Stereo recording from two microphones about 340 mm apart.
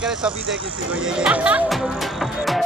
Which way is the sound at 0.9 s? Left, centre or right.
Centre.